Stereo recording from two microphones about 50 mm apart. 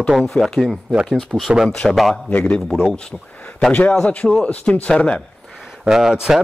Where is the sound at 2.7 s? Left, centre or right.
Centre.